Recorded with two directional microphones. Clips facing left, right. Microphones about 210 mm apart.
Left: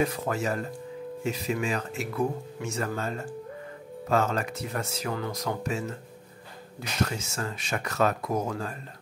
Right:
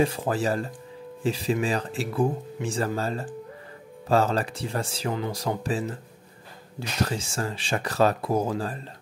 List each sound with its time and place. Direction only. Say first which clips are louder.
0.0 s speech: right 3 dB; 30° right (ahead or behind)
7.1 s speech: right 4 dB; 30° right (ahead or behind)